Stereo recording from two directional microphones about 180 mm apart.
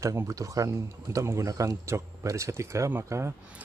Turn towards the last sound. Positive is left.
turn(degrees=-15)  # may be behind; listen again after turning